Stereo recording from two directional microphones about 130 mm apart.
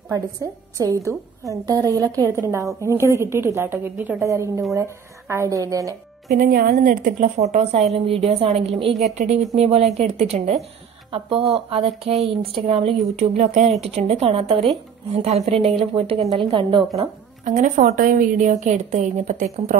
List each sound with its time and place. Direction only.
0.1 s a woman's voice: 25° right (ahead or behind)
6.3 s a woman's voice: 90° right
7.3 s a woman's voice: 55° right (ahead or behind)
9.2 s a woman's voice: 75° right (ahead or behind)
9.6 s a woman's voice: 55° right (ahead or behind)
17.5 s a woman's voice: 75° right (ahead or behind)